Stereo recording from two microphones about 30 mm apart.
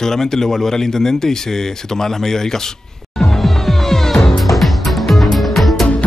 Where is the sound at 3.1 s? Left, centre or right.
Centre.